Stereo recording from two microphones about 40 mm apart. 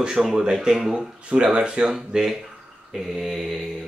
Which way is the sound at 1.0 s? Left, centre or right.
Right.